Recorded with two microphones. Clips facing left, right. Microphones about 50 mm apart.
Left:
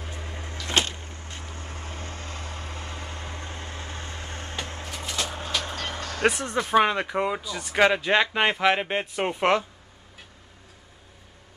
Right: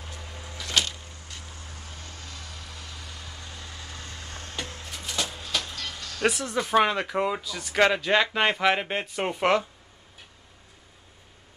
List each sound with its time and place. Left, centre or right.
0.0 s a sound: left
0.7 s vehicle: left
6.5 s speech: centre